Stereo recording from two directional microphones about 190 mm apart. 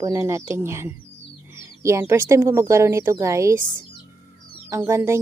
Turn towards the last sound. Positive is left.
turn(degrees=-15)  # may be behind; listen again after turning